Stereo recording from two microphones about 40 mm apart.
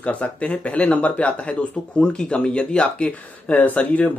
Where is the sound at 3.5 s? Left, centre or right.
Left.